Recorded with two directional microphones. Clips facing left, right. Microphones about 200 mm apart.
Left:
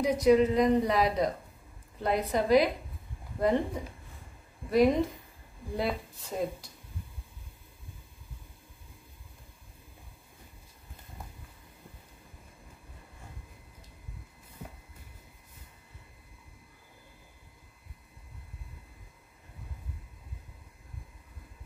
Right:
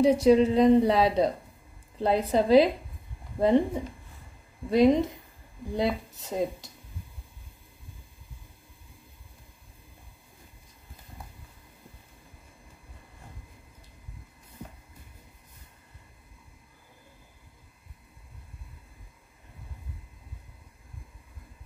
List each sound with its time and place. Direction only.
0.0 s speech: 30° right (ahead or behind)